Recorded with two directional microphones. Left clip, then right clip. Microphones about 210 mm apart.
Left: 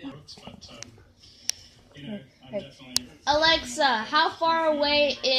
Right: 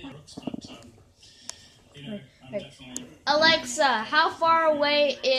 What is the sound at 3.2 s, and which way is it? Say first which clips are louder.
A woman's voice: right 1 dB; 10° right (ahead or behind).